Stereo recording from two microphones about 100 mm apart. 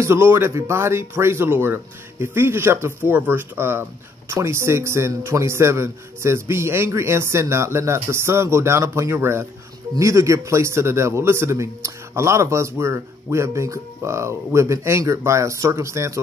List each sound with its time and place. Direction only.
0.0 s a man's voice: 25° right (ahead or behind)